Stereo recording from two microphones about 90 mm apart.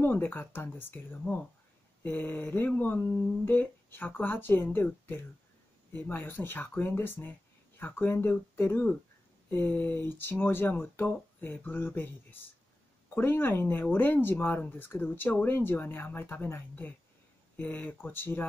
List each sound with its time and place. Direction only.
0.0 s speech: 25° left (ahead or behind)